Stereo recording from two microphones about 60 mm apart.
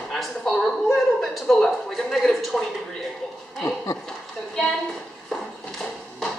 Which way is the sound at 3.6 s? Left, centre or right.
Left.